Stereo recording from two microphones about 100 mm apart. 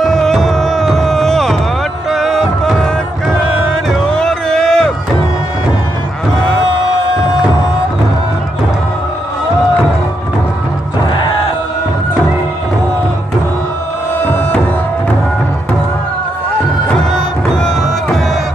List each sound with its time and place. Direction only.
0.0 s music: 5° left (ahead or behind)
3.9 s a sound: 5° left (ahead or behind)
14.2 s music: 20° left (ahead or behind)